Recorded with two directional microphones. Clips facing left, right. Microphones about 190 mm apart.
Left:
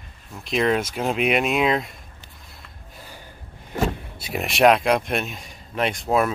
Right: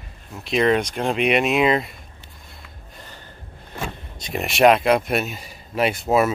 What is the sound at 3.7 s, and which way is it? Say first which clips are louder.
Speech: left 7 dB; 5° left (ahead or behind).